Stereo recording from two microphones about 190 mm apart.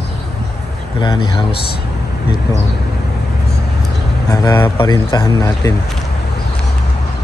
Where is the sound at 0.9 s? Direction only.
25° left (ahead or behind).